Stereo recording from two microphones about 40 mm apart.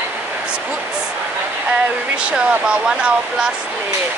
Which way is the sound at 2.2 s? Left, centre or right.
Right.